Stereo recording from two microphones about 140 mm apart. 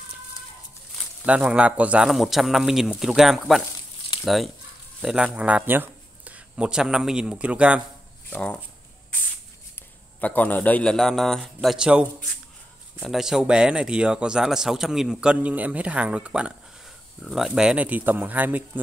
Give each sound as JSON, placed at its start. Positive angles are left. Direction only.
{"t": 1.2, "sound": "speech", "side_deg": -10}
{"t": 8.3, "sound": "speech", "side_deg": 10}
{"t": 10.2, "sound": "speech", "side_deg": 10}